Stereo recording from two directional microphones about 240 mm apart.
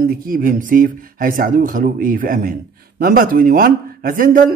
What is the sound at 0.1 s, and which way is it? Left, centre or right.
Speech, right.